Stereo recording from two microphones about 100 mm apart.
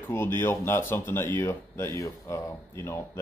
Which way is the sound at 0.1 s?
25° left (ahead or behind).